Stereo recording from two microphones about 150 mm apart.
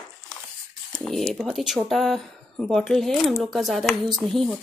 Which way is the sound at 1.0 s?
Centre (ahead or behind).